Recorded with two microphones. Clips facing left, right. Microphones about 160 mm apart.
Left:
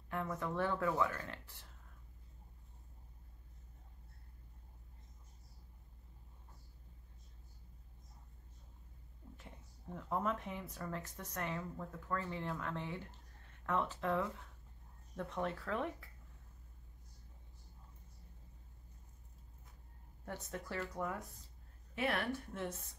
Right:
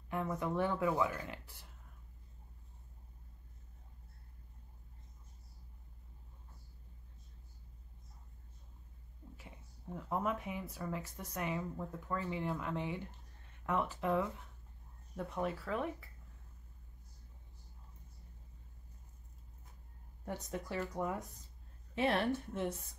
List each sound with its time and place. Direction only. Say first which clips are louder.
0.1 s speech: right 3 dB; 15° right (ahead or behind)
9.4 s speech: right 1 dB; 5° right (ahead or behind)
20.2 s a woman's voice: right 3 dB; 15° right (ahead or behind)